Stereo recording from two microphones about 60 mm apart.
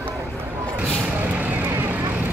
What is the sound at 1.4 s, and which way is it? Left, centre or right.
Vehicle, right.